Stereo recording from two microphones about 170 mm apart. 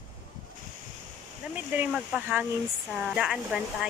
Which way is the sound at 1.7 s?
5° right (ahead or behind).